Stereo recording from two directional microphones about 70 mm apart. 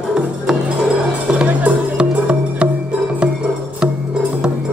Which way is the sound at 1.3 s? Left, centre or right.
Centre.